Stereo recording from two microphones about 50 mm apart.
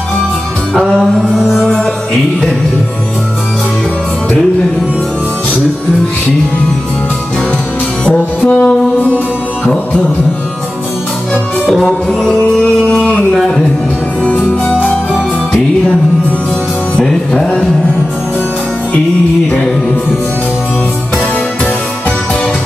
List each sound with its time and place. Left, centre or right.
1.6 s music: centre
8.0 s music: left
11.7 s music: centre
14.2 s music: left
16.9 s music: centre